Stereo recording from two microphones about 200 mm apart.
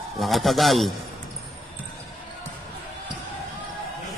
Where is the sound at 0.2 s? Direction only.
Centre (ahead or behind).